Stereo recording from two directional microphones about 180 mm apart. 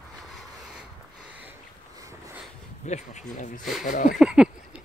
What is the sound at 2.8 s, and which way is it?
Speech, 40° left (ahead or behind).